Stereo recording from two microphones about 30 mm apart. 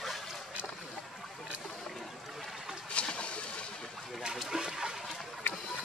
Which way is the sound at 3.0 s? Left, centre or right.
Left.